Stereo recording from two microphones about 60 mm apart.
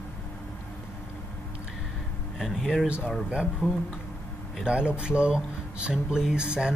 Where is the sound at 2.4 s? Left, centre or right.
Centre.